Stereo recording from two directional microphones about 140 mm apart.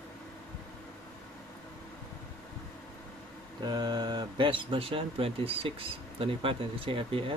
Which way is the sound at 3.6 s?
30° right (ahead or behind).